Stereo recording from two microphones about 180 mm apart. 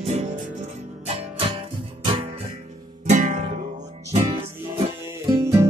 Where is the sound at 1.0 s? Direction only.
35° right (ahead or behind).